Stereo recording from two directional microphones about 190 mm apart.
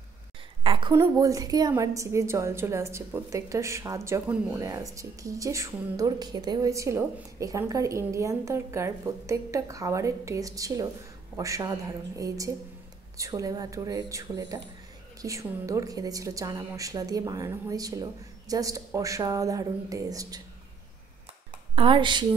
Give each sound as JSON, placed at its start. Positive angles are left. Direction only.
{"t": 0.7, "sound": "a sound", "side_deg": -25}
{"t": 0.9, "sound": "speech", "side_deg": -20}
{"t": 21.7, "sound": "speech", "side_deg": -25}